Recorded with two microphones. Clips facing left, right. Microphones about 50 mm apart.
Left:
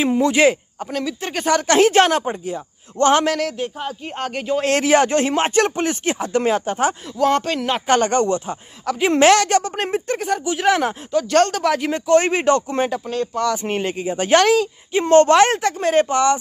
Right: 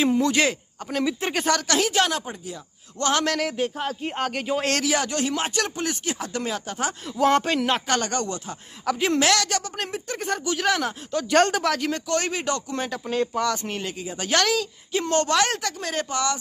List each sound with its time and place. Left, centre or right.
0.0 s speech: centre
0.9 s speech: centre
1.7 s a man's voice: left
3.3 s speech: centre
4.8 s a man's voice: left
7.2 s speech: centre
7.8 s a man's voice: left
10.1 s speech: centre
11.2 s speech: centre
11.6 s speech: centre
13.0 s speech: centre
13.7 s speech: left